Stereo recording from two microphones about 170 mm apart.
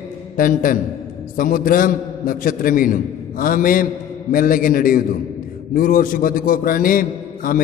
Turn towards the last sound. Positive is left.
turn(degrees=55)  # may be behind; listen again after turning